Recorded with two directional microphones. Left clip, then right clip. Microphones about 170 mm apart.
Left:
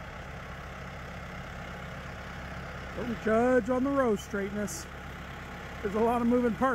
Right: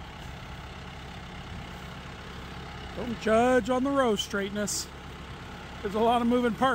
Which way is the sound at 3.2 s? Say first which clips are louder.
Right 3 dB; 20° right (ahead or behind).